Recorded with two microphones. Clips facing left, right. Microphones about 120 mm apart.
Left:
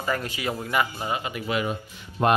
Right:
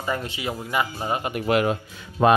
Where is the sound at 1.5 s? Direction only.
70° right (ahead or behind).